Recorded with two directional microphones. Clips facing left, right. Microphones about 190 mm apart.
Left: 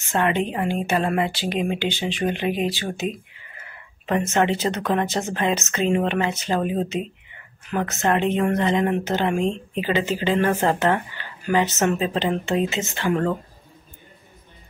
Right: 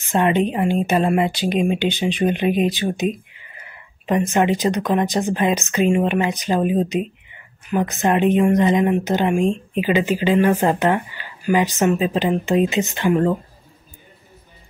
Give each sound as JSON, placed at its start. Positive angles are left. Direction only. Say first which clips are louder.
{"t": 0.0, "sound": "a woman's voice", "louder": "right 4 dB", "side_deg": -15}